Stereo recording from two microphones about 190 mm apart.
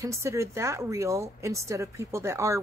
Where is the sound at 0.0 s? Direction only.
15° right (ahead or behind).